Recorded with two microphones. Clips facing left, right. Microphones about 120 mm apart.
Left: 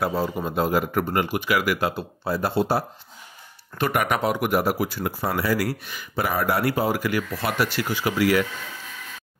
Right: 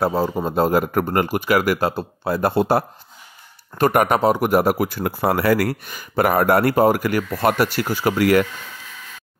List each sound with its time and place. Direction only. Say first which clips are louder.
0.0 s a man's voice: right 5 dB; 30° right (ahead or behind)
2.2 s speech: right 4 dB; 55° right (ahead or behind)
3.7 s speech: right 6 dB; 45° right (ahead or behind)